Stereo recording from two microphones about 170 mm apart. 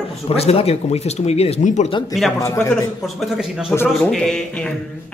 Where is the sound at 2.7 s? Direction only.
Centre (ahead or behind).